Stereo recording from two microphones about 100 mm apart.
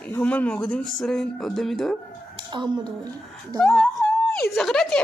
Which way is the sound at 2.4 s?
50° right (ahead or behind).